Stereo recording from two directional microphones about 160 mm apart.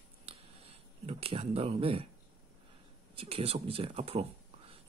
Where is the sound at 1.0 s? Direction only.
40° right (ahead or behind).